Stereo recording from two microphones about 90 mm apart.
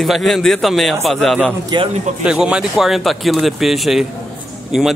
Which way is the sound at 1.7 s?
55° right (ahead or behind).